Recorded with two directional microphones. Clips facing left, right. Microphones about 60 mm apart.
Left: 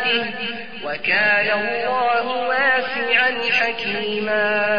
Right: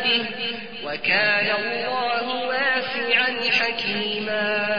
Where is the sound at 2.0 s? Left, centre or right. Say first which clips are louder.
Left 5 dB; left.